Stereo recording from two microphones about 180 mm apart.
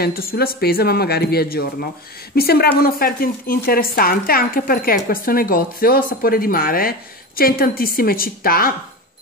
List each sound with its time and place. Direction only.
0.0 s speech: 55° left (ahead or behind)